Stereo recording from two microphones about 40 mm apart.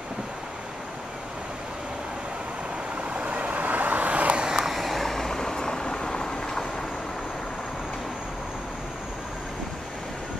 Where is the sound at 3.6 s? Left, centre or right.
Right.